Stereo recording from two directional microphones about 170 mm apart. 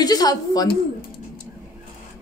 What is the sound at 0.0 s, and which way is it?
Speech, 25° left (ahead or behind).